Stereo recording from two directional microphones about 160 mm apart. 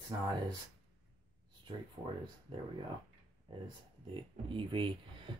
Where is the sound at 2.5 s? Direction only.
30° right (ahead or behind).